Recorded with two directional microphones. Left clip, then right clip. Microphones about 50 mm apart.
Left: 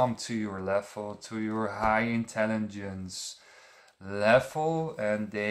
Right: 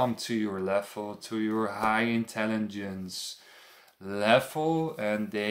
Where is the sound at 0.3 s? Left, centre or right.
Centre.